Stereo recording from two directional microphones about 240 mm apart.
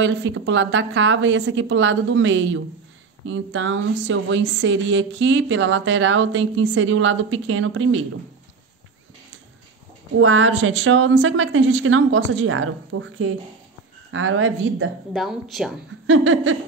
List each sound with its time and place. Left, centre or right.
0.0 s speech: right
10.1 s speech: right
15.1 s speech: centre
16.1 s a sound: right